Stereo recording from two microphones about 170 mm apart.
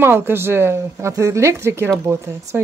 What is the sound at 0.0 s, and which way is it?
Speech, 15° right (ahead or behind).